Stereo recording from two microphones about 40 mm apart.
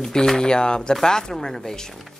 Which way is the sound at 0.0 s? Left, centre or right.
Centre.